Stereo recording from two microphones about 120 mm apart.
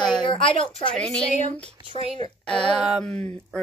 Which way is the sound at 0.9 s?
5° left (ahead or behind).